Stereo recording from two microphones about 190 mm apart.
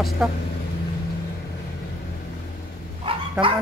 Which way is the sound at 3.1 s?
30° right (ahead or behind).